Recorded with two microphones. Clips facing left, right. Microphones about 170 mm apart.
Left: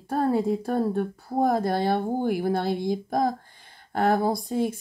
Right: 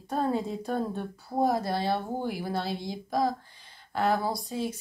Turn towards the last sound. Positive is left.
turn(degrees=55)  # may be behind; listen again after turning